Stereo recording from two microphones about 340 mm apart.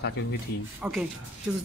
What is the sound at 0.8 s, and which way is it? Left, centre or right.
Speech, centre.